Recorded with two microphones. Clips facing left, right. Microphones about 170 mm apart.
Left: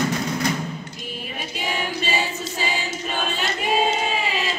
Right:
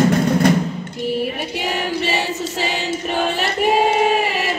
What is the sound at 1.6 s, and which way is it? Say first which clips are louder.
Choir: right 4 dB; 70° right (ahead or behind).